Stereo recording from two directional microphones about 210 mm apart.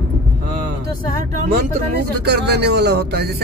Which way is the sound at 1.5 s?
45° right (ahead or behind).